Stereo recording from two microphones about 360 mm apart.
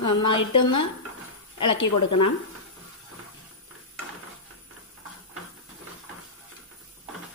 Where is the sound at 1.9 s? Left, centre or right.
Left.